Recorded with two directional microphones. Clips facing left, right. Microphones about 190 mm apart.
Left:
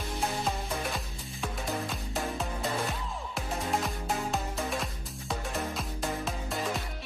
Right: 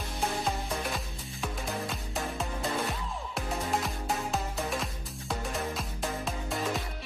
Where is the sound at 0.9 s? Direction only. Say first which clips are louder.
Even; centre (ahead or behind).